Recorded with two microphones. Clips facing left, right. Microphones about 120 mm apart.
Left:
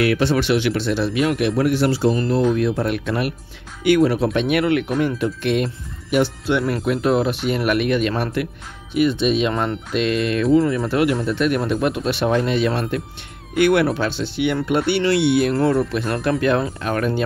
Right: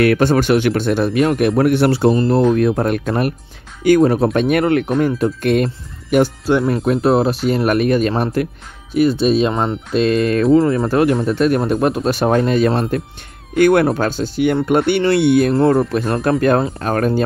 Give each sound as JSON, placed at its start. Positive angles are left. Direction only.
{"t": 0.0, "sound": "speech", "side_deg": -50}
{"t": 1.6, "sound": "speech", "side_deg": -60}
{"t": 2.1, "sound": "speech", "side_deg": -35}
{"t": 2.5, "sound": "speech", "side_deg": -50}